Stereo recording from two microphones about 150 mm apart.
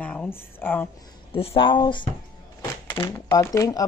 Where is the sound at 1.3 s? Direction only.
40° left (ahead or behind).